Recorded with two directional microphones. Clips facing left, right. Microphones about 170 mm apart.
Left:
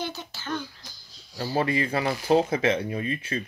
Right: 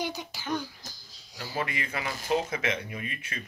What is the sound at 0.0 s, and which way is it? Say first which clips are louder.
Speech: even; 15° right (ahead or behind).